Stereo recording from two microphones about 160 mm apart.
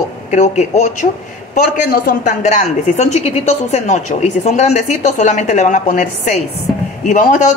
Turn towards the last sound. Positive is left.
turn(degrees=50)  # may be behind; listen again after turning